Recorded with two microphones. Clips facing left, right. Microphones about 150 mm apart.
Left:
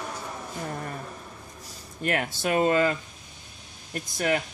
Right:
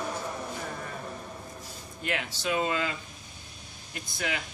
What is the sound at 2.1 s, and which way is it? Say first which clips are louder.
Speech: left 5 dB; 50° left (ahead or behind).